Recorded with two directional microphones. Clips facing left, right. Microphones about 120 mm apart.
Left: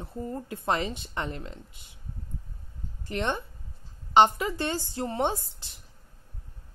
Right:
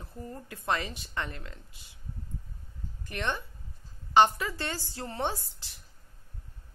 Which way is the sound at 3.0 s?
25° left (ahead or behind).